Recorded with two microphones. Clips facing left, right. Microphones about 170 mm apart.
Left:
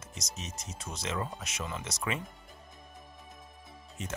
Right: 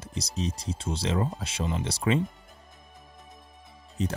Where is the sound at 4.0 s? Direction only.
35° right (ahead or behind).